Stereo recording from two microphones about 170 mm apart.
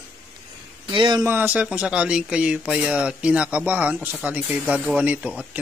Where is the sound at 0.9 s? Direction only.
25° right (ahead or behind).